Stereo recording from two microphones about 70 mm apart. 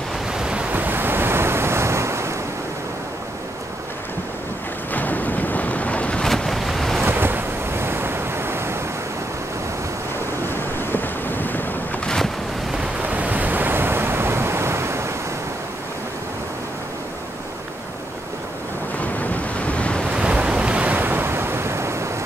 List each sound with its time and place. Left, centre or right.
0.3 s waves: centre
0.7 s waves: right
4.9 s a sound: left
6.2 s waves: centre
7.1 s waves: right
10.9 s waves: left
13.0 s waves: right
19.1 s waves: centre
20.1 s waves: centre; by 22.1 s right